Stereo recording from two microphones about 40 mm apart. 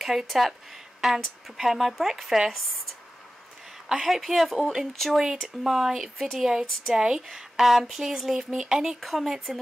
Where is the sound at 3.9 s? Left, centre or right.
Centre.